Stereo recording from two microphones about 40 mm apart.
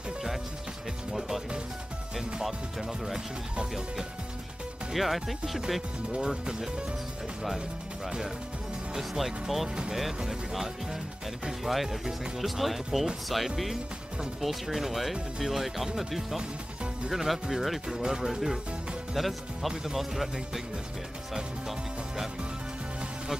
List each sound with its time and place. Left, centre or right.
2.4 s speech: centre
4.9 s speech: centre
6.1 s speech: right
8.9 s speech: centre
17.8 s speech: centre
19.7 s speech: centre
20.0 s speech: centre
21.6 s speech: centre